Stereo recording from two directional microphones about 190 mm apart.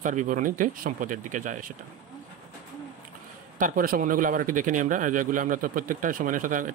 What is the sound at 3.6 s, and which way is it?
Speech, 50° right (ahead or behind).